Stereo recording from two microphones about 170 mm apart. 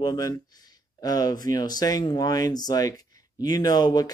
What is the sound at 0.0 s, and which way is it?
Speech, 20° left (ahead or behind).